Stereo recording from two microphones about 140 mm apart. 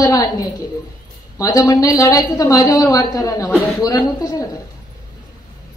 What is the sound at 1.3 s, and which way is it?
A woman's voice, 25° left (ahead or behind).